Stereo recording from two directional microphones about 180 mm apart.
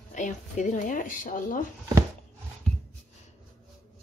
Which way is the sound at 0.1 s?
45° left (ahead or behind).